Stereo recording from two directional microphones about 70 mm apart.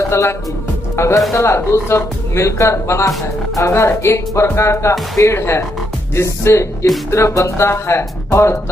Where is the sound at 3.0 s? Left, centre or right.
Left.